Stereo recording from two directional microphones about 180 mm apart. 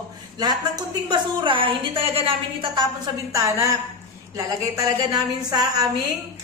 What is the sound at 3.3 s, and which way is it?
A woman's voice, 15° right (ahead or behind).